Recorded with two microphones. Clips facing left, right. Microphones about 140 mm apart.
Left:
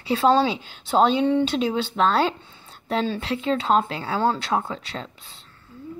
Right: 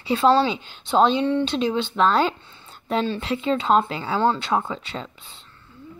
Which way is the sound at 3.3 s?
Centre (ahead or behind).